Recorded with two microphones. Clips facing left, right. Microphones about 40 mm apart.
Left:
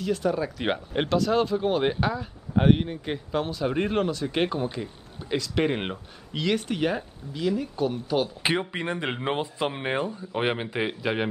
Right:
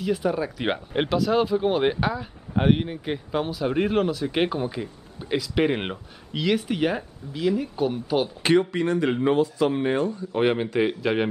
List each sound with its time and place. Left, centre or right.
0.0 s speech: centre
8.4 s speech: centre